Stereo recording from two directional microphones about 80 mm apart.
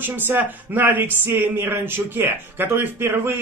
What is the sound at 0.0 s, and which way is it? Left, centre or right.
A man's voice, right.